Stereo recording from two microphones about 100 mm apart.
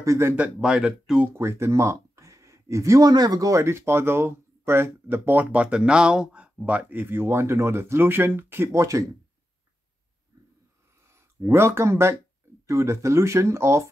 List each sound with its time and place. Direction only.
0.0 s speech: 30° right (ahead or behind)
0.4 s speech: 10° right (ahead or behind)
1.3 s speech: 25° right (ahead or behind)
11.1 s speech: 25° right (ahead or behind)